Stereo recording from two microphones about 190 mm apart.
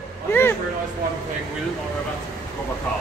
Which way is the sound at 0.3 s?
10° left (ahead or behind).